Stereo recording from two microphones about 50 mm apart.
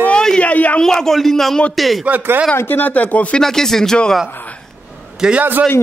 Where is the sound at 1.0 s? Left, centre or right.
Centre.